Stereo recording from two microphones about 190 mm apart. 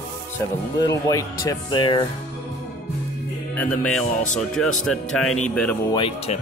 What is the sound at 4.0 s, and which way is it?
Speech, 40° left (ahead or behind).